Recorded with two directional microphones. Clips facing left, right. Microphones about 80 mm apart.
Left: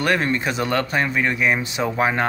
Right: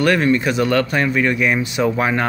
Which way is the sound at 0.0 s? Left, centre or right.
Left.